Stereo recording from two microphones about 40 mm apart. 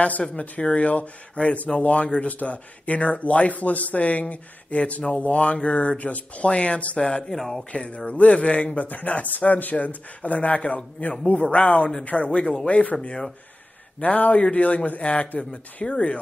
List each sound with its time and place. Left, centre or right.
0.4 s speech: left
7.0 s speech: left
7.3 s speech: centre
7.7 s speech: left
8.8 s speech: left
13.9 s speech: left